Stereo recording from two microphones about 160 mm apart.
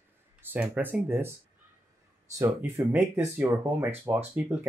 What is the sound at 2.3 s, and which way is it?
Speech, 15° right (ahead or behind).